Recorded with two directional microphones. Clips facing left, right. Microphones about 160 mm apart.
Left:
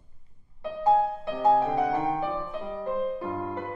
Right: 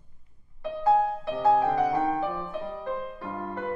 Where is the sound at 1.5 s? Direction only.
20° left (ahead or behind).